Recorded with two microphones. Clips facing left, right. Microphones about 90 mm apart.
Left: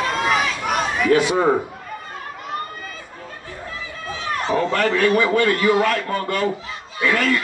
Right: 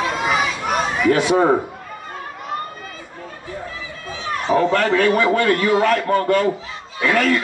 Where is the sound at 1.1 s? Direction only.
20° right (ahead or behind).